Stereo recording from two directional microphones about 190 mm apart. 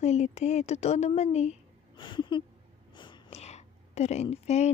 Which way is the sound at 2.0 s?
25° left (ahead or behind).